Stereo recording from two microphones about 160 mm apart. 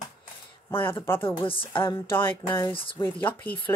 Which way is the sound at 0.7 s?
35° left (ahead or behind).